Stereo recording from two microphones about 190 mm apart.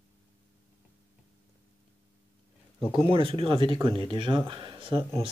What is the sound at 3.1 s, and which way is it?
Speech, 30° right (ahead or behind).